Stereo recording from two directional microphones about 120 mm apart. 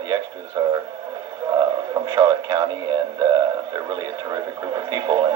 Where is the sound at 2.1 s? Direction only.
35° right (ahead or behind).